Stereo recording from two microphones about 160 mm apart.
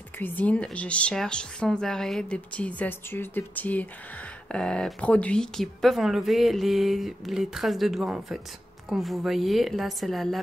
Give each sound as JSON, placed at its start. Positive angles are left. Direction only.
{"t": 0.2, "sound": "speech", "side_deg": 10}